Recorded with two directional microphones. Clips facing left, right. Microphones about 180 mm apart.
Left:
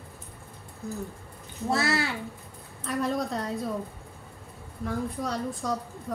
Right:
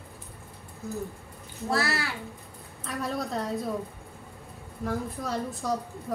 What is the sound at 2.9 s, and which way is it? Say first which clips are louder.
Speech: left 3 dB; centre (ahead or behind).